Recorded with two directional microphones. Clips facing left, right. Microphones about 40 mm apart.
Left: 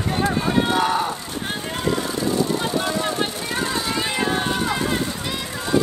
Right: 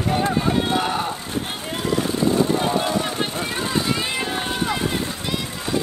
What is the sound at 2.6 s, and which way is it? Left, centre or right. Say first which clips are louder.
Vehicle: right 2 dB; centre.